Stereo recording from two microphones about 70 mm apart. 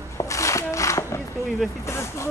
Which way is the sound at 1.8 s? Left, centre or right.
Left.